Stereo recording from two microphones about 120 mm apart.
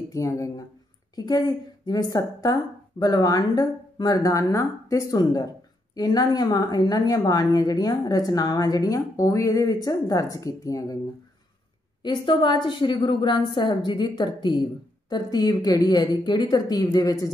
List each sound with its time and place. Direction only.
0.1 s a woman's voice: 25° left (ahead or behind)
12.0 s a woman's voice: 40° left (ahead or behind)